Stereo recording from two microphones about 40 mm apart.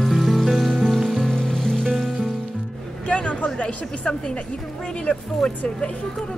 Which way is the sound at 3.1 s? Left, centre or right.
Left.